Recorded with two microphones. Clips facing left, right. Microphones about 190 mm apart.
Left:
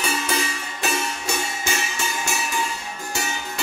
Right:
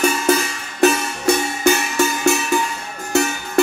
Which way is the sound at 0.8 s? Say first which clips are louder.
Right 11 dB; 60° right (ahead or behind).